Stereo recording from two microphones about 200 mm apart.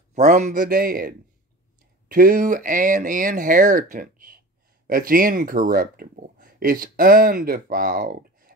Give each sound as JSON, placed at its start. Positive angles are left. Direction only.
{"t": 0.1, "sound": "speech", "side_deg": -35}